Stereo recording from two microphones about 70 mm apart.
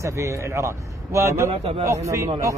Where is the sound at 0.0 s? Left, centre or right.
Right.